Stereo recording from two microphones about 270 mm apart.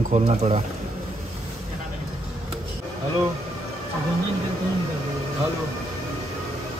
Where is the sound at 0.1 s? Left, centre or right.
Right.